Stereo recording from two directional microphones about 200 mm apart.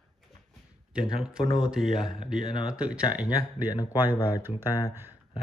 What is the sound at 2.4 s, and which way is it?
Speech, 25° left (ahead or behind).